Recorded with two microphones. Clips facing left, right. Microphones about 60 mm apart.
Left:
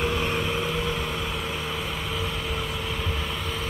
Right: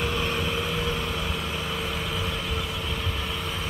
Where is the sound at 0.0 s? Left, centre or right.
Centre.